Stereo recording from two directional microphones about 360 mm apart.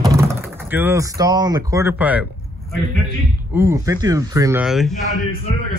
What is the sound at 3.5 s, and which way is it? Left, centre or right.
Speech, centre.